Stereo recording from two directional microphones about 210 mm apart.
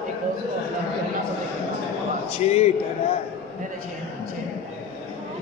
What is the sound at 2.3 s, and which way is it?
Speech, 30° left (ahead or behind).